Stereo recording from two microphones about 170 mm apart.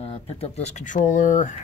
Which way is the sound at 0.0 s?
35° left (ahead or behind).